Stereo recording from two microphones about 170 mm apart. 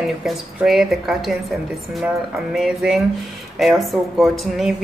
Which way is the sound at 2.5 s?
Centre (ahead or behind).